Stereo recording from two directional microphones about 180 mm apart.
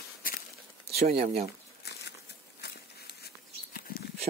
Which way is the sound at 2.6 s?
65° left (ahead or behind).